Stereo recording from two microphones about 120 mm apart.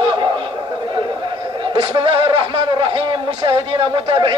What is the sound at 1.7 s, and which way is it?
Speech, 45° right (ahead or behind).